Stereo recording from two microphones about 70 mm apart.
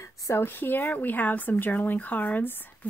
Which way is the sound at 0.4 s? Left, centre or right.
Left.